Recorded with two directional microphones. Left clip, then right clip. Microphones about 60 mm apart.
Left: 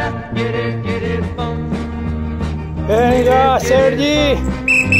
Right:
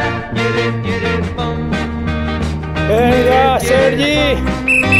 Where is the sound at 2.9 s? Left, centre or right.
Centre.